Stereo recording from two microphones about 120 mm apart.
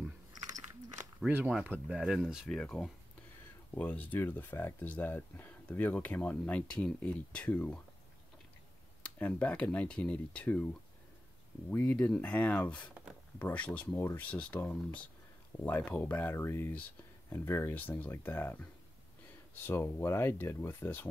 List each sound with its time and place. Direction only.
1.2 s speech: 10° right (ahead or behind)
2.5 s speech: 5° left (ahead or behind)
9.0 s speech: 10° left (ahead or behind)